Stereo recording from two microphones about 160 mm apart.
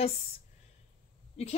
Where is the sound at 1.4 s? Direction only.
40° left (ahead or behind).